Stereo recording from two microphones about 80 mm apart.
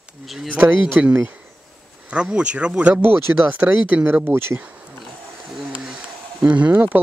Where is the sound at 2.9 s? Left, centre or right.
Right.